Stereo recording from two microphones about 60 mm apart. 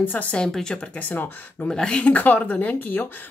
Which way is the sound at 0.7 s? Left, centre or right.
Left.